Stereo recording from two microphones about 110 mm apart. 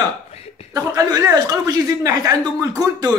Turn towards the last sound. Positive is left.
turn(degrees=-30)  # may be behind; listen again after turning